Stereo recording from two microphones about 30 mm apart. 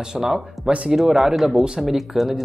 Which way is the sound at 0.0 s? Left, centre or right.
Right.